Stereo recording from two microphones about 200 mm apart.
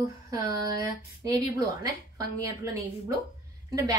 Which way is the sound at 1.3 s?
20° right (ahead or behind).